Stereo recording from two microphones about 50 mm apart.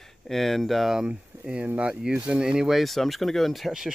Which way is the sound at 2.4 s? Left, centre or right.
Centre.